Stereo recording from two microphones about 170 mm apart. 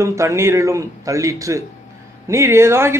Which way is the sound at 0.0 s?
15° right (ahead or behind).